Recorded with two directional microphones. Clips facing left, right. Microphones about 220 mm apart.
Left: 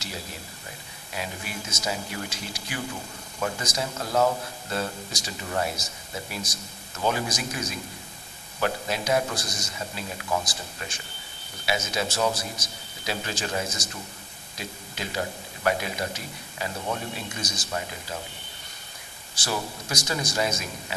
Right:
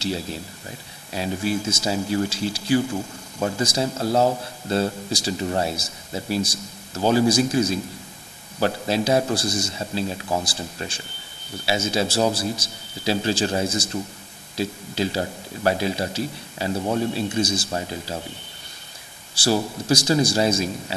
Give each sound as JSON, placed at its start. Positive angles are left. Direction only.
{"t": 1.1, "sound": "speech", "side_deg": -30}
{"t": 19.3, "sound": "speech", "side_deg": -30}